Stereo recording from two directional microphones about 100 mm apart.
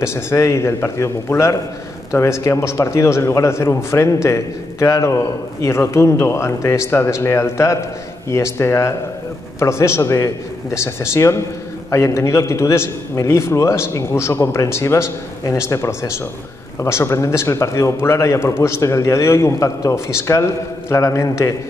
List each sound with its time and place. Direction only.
0.0 s a man's voice: 25° left (ahead or behind)